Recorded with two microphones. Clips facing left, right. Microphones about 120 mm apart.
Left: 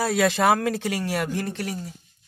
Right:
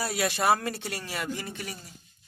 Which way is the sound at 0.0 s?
90° left.